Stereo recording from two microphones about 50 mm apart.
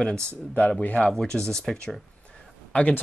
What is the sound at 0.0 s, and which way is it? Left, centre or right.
Speech, centre.